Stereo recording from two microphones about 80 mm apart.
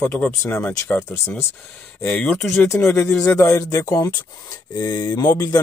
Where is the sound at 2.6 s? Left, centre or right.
Left.